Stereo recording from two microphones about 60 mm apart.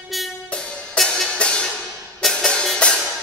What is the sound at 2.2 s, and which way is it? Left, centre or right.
Music, centre.